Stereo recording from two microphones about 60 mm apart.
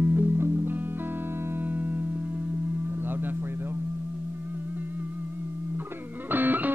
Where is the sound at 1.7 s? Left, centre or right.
Right.